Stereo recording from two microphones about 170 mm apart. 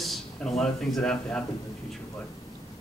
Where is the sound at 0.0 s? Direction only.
Centre (ahead or behind).